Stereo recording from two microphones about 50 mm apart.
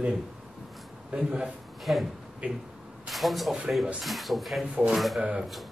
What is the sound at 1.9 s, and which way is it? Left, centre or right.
Speech, centre.